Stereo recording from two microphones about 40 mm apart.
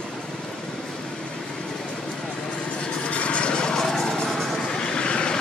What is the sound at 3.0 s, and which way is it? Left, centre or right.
Vehicle, left.